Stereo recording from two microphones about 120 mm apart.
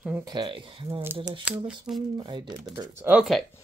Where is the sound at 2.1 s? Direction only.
40° right (ahead or behind).